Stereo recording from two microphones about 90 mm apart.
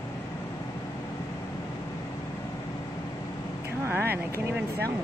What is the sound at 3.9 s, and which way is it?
Vehicle, 25° right (ahead or behind).